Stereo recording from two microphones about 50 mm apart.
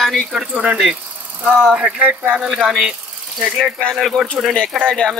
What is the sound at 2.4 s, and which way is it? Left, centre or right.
Speech, centre.